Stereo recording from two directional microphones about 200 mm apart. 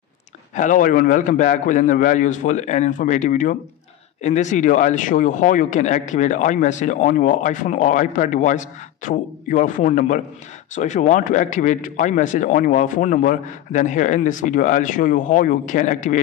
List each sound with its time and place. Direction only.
0.6 s speech: 40° left (ahead or behind)